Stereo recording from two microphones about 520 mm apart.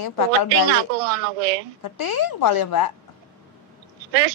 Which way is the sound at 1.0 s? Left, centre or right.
Right.